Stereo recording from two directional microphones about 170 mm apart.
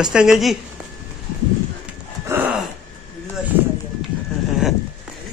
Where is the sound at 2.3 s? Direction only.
15° right (ahead or behind).